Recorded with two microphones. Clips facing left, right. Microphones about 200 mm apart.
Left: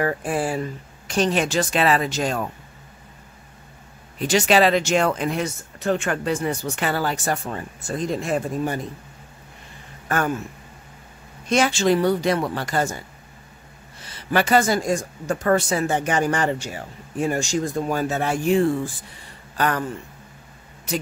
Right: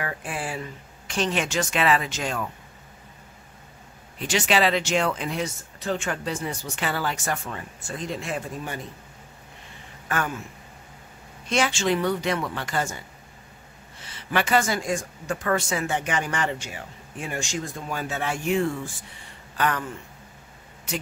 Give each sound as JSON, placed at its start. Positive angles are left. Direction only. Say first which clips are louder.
{"t": 0.0, "sound": "a woman's voice", "louder": "left 9 dB", "side_deg": 40}
{"t": 4.3, "sound": "speech", "louder": "left 5 dB", "side_deg": 40}
{"t": 10.0, "sound": "speech", "louder": "left 5 dB", "side_deg": 45}
{"t": 11.4, "sound": "a woman's voice", "louder": "left 5 dB", "side_deg": 45}
{"t": 14.0, "sound": "a woman's voice", "louder": "left 5 dB", "side_deg": 40}